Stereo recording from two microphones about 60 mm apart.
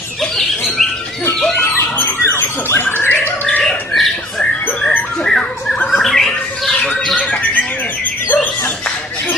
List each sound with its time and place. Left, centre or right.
0.2 s bird: centre
1.6 s a sound: left
3.6 s squawk: centre
4.8 s music: centre
5.9 s squawk: centre
7.2 s bird: left